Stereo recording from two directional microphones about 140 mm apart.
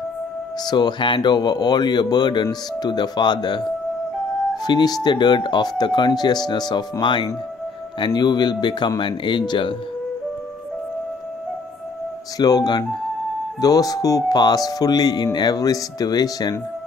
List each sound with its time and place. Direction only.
0.7 s speech: 30° left (ahead or behind)
12.4 s speech: 25° left (ahead or behind)